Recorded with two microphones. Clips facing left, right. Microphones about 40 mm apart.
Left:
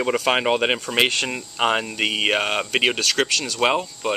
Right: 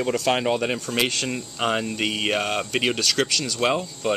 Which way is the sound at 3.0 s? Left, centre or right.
Centre.